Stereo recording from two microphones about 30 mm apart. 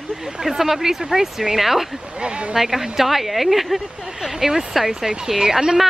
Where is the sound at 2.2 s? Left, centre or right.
Right.